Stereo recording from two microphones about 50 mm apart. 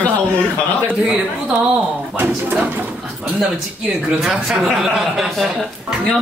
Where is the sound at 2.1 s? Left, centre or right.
Right.